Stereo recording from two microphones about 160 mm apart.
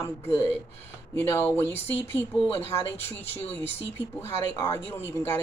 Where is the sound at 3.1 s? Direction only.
40° left (ahead or behind).